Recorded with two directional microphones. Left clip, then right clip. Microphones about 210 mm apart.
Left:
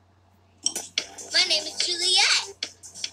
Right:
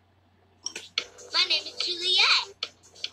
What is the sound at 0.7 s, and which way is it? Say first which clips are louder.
Dishes: left 2 dB; 25° left (ahead or behind).